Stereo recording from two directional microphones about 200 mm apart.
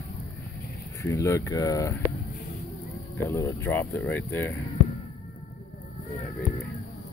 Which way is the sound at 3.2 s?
15° left (ahead or behind).